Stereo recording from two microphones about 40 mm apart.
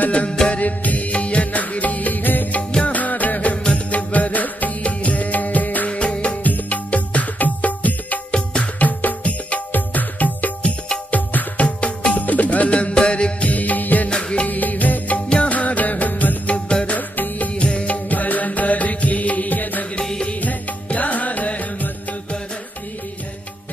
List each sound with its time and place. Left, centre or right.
0.0 s music: left
5.9 s music: left
6.4 s music: left
8.3 s music: left
8.7 s music: left
13.5 s music: left
14.0 s music: left
14.5 s music: left
15.2 s music: left
15.5 s music: left
16.4 s music: left